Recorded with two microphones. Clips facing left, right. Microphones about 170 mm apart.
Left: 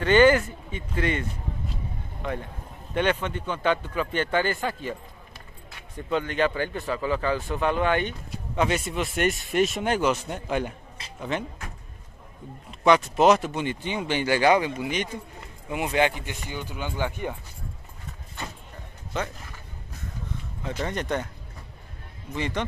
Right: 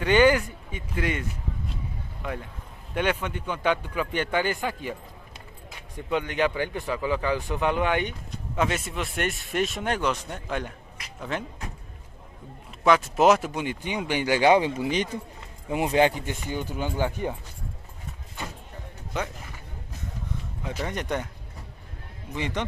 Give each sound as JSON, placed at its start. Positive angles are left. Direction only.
{"t": 0.0, "sound": "a man's voice", "side_deg": -10}
{"t": 2.9, "sound": "speech", "side_deg": -10}
{"t": 5.9, "sound": "speech", "side_deg": -15}
{"t": 8.3, "sound": "speech", "side_deg": 0}
{"t": 12.8, "sound": "speech", "side_deg": -5}
{"t": 15.7, "sound": "speech", "side_deg": -35}
{"t": 19.1, "sound": "speech", "side_deg": -15}
{"t": 20.6, "sound": "speech", "side_deg": -10}
{"t": 22.3, "sound": "speech", "side_deg": -15}